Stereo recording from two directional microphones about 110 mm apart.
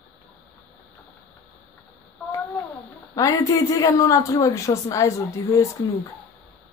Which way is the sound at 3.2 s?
30° left (ahead or behind).